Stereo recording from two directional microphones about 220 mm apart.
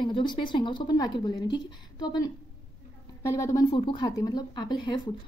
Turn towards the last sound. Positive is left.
turn(degrees=20)  # may be behind; listen again after turning